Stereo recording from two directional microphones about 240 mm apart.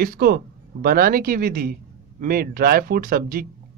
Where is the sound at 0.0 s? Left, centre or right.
Right.